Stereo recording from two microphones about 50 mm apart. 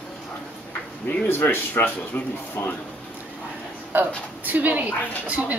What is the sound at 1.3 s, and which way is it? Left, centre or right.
Speech, left.